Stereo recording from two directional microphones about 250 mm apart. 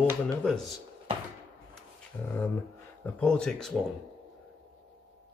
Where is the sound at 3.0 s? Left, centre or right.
Centre.